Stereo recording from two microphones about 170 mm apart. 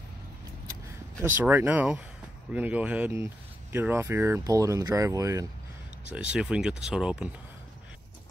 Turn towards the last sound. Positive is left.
turn(degrees=-5)  # may be behind; listen again after turning